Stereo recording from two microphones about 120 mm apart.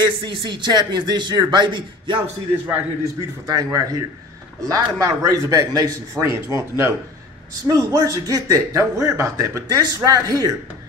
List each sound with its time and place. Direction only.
0.0 s a man's voice: 40° right (ahead or behind)
3.4 s speech: 30° right (ahead or behind)